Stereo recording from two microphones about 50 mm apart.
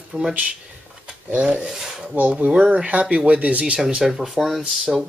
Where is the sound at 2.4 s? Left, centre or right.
Right.